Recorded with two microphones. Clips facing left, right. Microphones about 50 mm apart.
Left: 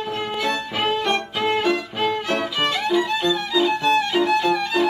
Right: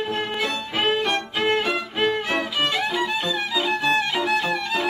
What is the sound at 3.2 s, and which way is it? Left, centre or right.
Violin, centre.